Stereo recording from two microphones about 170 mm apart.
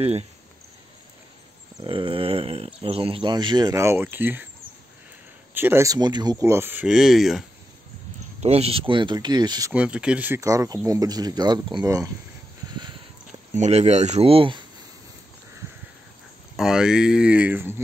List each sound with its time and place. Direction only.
1.8 s speech: 30° right (ahead or behind); by 4.5 s 10° right (ahead or behind)
5.5 s speech: 10° right (ahead or behind)
6.4 s speech: 15° right (ahead or behind)
8.4 s speech: 35° right (ahead or behind)
9.7 s speech: 5° right (ahead or behind)
12.7 s a sound: 25° right (ahead or behind)
13.6 s speech: 40° right (ahead or behind)
16.5 s speech: 5° right (ahead or behind)